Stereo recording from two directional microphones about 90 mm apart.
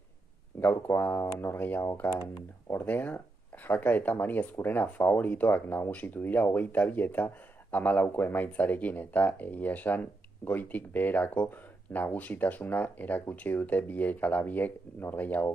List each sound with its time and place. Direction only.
0.6 s speech: 25° left (ahead or behind)